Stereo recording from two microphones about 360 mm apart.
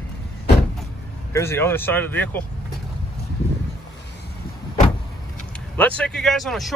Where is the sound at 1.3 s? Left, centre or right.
Centre.